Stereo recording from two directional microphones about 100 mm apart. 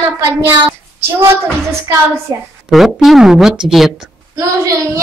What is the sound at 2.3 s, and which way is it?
Speech, 40° right (ahead or behind).